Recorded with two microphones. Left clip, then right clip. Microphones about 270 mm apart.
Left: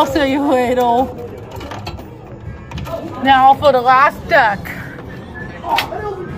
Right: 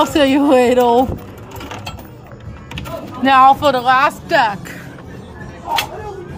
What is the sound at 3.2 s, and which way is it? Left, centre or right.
Speech, right.